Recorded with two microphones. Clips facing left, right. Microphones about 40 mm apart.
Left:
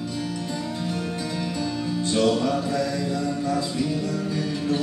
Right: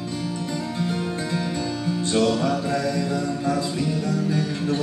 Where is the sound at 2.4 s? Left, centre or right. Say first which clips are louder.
Right 1 dB; centre.